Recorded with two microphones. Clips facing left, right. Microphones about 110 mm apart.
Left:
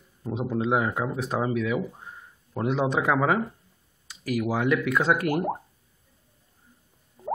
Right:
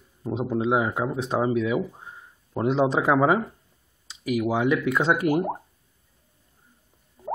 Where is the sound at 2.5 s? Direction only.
25° right (ahead or behind).